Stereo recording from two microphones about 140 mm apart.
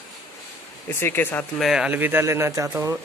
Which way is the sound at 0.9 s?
15° left (ahead or behind).